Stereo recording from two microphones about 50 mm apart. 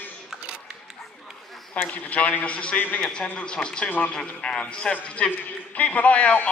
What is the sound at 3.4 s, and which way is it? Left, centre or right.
Speech, centre.